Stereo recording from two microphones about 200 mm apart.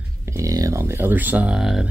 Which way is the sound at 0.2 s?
15° right (ahead or behind).